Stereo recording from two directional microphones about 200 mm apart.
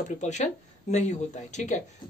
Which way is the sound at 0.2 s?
35° left (ahead or behind).